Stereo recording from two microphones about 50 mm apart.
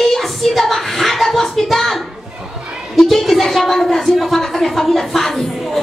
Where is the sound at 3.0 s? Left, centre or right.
Centre.